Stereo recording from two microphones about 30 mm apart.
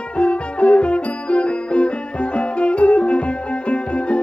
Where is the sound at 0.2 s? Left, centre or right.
Left.